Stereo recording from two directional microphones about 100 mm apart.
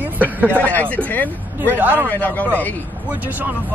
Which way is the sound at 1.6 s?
20° right (ahead or behind).